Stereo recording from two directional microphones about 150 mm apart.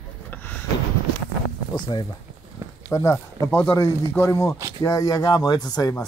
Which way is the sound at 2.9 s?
20° left (ahead or behind).